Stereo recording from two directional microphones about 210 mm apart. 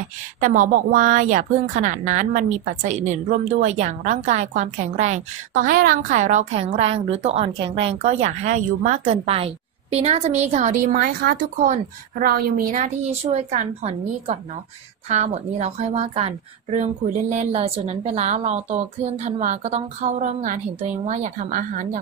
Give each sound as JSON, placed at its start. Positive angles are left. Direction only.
{"t": 0.4, "sound": "a woman's voice", "side_deg": -40}